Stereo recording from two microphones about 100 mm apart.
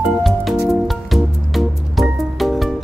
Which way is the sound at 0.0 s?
Centre (ahead or behind).